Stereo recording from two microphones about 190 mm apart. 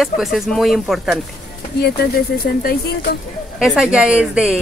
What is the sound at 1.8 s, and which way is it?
Speech, 55° left (ahead or behind).